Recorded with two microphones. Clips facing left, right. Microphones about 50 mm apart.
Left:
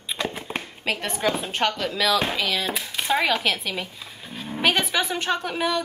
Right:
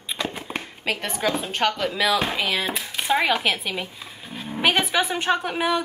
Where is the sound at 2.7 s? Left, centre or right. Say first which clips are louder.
Right 1 dB; centre.